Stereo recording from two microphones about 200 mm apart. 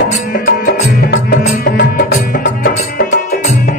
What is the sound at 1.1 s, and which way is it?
Music, 50° left (ahead or behind).